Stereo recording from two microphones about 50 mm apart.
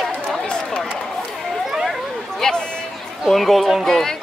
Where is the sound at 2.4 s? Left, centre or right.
Centre.